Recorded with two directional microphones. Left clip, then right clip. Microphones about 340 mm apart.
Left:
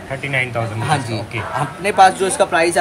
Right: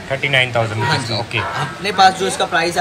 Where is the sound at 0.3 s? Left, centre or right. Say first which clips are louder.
Right 4 dB; centre.